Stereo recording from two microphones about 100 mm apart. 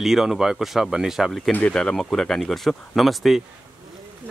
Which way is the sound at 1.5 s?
10° left (ahead or behind).